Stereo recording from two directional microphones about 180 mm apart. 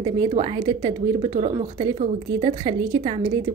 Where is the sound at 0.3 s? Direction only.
30° right (ahead or behind).